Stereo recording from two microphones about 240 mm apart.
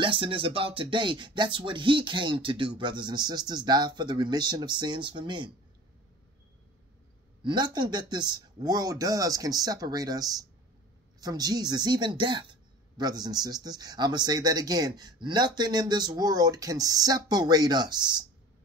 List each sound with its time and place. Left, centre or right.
0.0 s a sound: right
2.8 s speech: centre
7.4 s speech: centre